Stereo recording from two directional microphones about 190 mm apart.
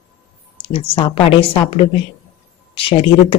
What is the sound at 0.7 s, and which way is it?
A woman's voice, 30° left (ahead or behind).